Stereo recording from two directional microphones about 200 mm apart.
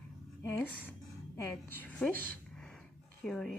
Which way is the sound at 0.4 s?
10° left (ahead or behind).